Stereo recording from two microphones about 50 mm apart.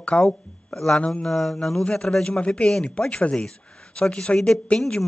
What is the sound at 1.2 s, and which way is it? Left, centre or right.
Speech, centre.